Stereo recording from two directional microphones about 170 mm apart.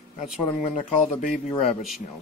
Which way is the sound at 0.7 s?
45° left (ahead or behind).